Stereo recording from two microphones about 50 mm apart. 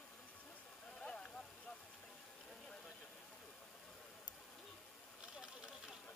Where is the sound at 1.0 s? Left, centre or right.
Left.